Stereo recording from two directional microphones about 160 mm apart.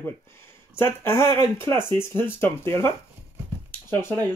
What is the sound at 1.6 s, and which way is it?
Speech, 30° right (ahead or behind).